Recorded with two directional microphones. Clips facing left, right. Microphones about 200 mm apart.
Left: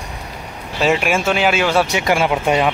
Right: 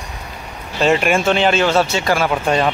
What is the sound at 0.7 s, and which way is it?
Speech, 5° left (ahead or behind).